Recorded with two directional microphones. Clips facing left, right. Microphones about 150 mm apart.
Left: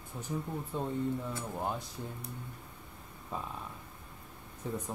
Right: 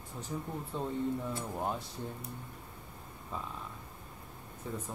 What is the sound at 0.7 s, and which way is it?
Speech, 10° left (ahead or behind).